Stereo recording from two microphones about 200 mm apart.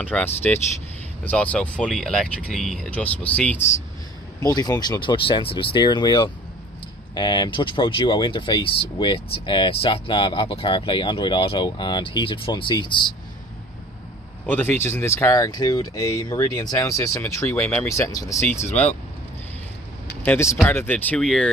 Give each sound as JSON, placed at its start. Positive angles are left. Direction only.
{"t": 0.0, "sound": "speech", "side_deg": 10}
{"t": 4.4, "sound": "speech", "side_deg": 20}
{"t": 14.4, "sound": "speech", "side_deg": 10}
{"t": 20.2, "sound": "speech", "side_deg": 15}